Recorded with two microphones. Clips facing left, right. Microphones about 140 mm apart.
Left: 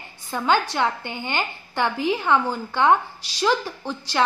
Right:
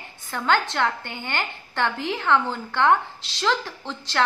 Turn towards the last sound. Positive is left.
turn(degrees=15)  # may be behind; listen again after turning